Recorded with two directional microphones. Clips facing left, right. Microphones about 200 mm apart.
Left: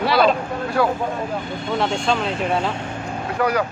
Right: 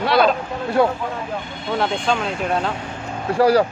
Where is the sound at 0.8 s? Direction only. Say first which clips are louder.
Right 2 dB; 20° right (ahead or behind).